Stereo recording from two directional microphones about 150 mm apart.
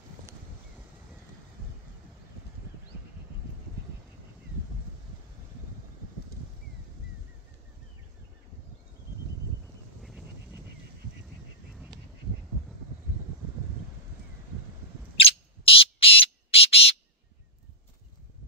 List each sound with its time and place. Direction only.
15.2 s bird: 40° left (ahead or behind)